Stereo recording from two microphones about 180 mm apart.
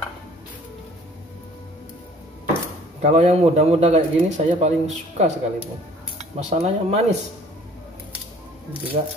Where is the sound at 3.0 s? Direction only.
40° right (ahead or behind).